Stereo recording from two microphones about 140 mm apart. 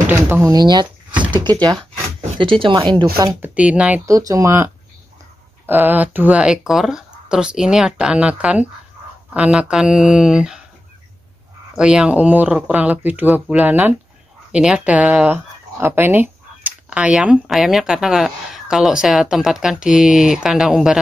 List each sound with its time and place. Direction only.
0.1 s speech: 15° right (ahead or behind)
0.5 s speech: 30° right (ahead or behind)
3.3 s speech: 10° right (ahead or behind)
4.0 s speech: 25° right (ahead or behind)
5.7 s speech: 15° right (ahead or behind)
11.7 s speech: 5° right (ahead or behind)